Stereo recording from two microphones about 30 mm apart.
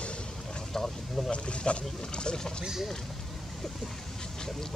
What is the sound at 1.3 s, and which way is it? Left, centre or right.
Speech, left.